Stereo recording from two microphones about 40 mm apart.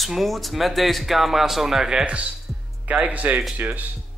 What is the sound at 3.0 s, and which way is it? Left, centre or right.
Speech, right.